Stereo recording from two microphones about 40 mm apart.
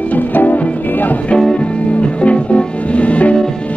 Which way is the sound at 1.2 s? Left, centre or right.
Left.